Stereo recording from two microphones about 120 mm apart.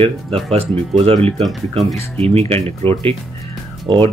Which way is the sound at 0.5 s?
55° right (ahead or behind).